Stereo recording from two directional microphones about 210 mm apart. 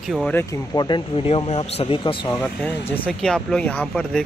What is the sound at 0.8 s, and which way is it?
Speech, 25° left (ahead or behind).